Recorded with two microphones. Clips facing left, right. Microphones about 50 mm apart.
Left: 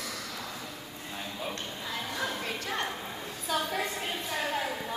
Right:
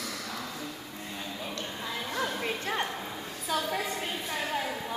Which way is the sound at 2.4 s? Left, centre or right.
Centre.